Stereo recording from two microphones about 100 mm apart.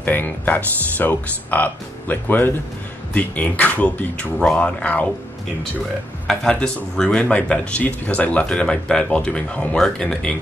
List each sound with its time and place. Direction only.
0.0 s speech: 20° left (ahead or behind)
6.2 s speech: 10° left (ahead or behind)